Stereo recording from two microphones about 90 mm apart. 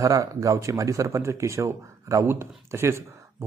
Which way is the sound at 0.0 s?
40° right (ahead or behind).